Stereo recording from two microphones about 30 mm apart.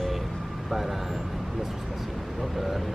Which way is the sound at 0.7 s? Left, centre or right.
Centre.